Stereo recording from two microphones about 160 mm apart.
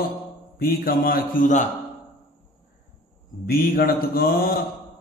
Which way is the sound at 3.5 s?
70° left (ahead or behind).